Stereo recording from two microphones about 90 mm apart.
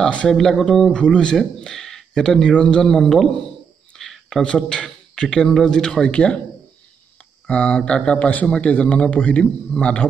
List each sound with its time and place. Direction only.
0.0 s a man's voice: 10° left (ahead or behind)
7.4 s speech: 15° left (ahead or behind)